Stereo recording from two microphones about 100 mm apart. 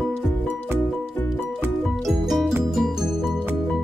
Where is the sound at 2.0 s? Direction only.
Centre (ahead or behind).